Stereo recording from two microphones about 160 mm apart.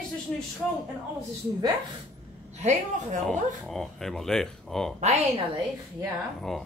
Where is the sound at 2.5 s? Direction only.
45° right (ahead or behind).